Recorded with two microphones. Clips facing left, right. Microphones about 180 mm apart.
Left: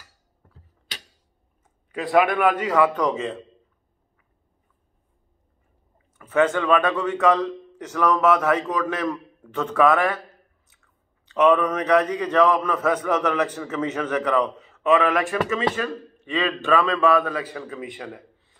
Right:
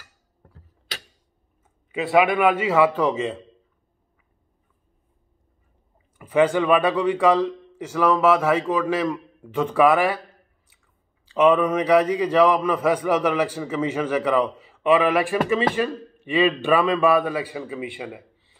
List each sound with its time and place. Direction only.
1.9 s speech: 5° right (ahead or behind)
6.1 s speech: 10° right (ahead or behind)